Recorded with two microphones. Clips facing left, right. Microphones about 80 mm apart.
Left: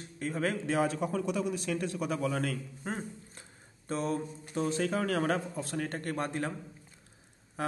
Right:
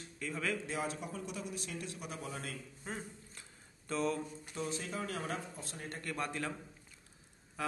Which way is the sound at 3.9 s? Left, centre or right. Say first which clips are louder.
Left 3 dB; left.